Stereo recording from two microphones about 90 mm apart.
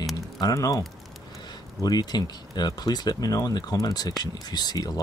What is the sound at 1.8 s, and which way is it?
Speech, 50° left (ahead or behind).